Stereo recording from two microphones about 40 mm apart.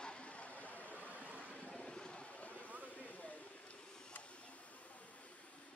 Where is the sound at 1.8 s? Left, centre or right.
Left.